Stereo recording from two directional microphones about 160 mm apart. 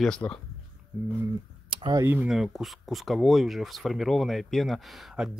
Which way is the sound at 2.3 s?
Centre (ahead or behind).